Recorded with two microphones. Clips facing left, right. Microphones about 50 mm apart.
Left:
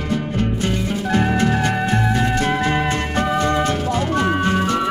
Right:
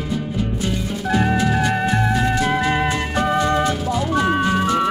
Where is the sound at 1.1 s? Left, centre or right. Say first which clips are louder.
Even; left.